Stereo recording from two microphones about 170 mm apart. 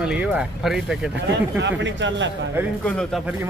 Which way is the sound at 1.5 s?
90° right.